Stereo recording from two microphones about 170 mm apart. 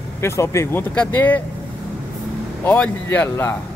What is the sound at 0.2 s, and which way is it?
Speech, 15° left (ahead or behind).